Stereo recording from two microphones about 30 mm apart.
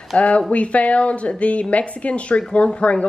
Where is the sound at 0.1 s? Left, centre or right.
Left.